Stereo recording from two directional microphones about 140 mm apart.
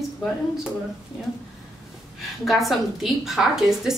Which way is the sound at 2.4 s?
Centre (ahead or behind).